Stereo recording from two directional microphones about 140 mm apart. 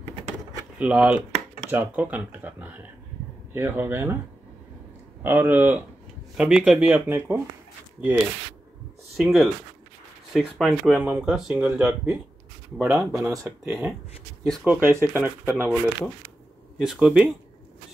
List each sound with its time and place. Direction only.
0.7 s speech: 10° right (ahead or behind)
5.2 s speech: 15° right (ahead or behind)
7.1 s speech: 15° right (ahead or behind)
9.1 s speech: centre (ahead or behind)
13.1 s speech: 20° right (ahead or behind)
16.7 s speech: 5° right (ahead or behind)